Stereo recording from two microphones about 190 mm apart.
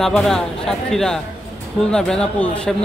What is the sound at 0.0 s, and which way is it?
Speech, centre (ahead or behind).